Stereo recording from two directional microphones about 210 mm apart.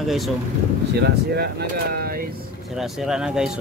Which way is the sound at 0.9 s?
50° right (ahead or behind).